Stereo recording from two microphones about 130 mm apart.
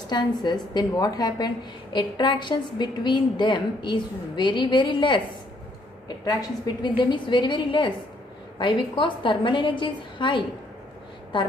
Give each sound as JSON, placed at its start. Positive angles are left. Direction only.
{"t": 0.1, "sound": "a woman's voice", "side_deg": 35}